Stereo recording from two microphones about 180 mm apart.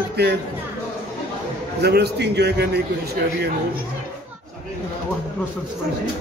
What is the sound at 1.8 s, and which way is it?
A man's voice, 65° right (ahead or behind).